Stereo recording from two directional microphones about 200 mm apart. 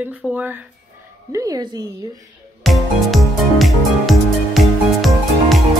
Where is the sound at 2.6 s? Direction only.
Centre (ahead or behind).